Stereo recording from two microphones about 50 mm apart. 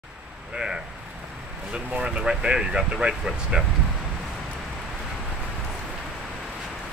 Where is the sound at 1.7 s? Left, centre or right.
Right.